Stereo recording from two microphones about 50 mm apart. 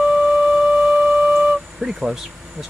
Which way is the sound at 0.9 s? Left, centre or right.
Centre.